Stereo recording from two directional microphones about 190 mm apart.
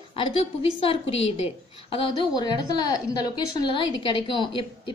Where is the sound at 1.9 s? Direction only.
20° left (ahead or behind).